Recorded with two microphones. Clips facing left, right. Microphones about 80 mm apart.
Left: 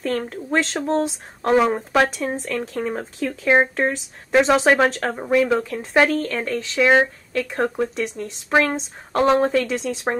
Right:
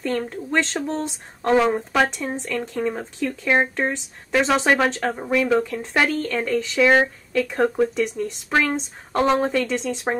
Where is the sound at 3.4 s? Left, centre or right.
Centre.